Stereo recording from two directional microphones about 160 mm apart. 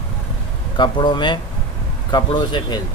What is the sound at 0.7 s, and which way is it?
Speech, 30° left (ahead or behind).